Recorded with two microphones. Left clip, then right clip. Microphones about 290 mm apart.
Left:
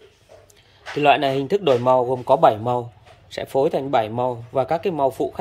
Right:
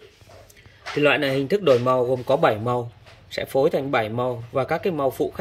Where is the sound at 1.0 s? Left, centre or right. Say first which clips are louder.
Left 3 dB; centre.